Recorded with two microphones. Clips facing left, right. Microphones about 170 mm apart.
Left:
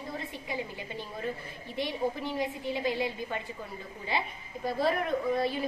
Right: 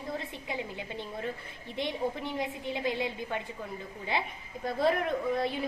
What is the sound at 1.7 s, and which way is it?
A woman's voice, 20° right (ahead or behind).